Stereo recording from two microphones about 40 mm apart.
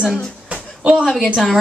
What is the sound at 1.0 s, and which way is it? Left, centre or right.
Speech, centre.